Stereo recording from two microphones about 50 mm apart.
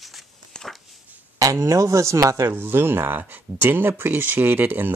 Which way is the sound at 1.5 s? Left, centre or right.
Right.